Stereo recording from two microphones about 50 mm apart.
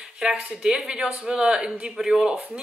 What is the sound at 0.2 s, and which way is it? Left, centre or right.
Speech, centre.